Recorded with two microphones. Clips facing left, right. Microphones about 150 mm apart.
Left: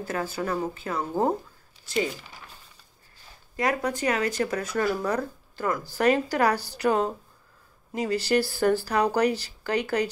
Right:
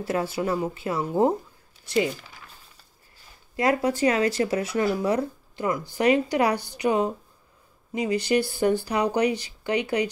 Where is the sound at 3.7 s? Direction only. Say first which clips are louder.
Right 4 dB; 30° right (ahead or behind); by 7.1 s 10° right (ahead or behind).